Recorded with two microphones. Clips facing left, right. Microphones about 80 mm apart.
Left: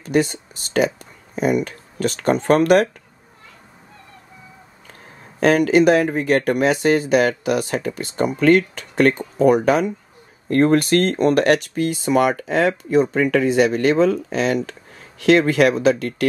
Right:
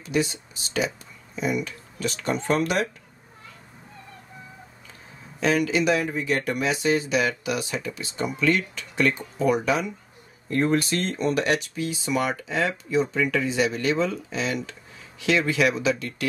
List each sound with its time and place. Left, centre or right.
0.0 s speech: left
5.4 s speech: left